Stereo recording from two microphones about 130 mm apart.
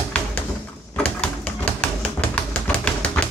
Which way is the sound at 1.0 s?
10° left (ahead or behind).